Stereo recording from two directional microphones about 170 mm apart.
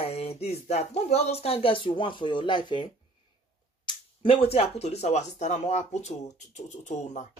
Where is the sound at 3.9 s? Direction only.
35° left (ahead or behind).